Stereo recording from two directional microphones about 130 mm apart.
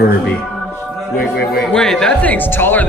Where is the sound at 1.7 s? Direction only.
5° left (ahead or behind).